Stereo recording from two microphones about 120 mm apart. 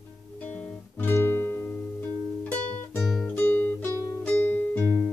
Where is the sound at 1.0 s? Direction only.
20° left (ahead or behind).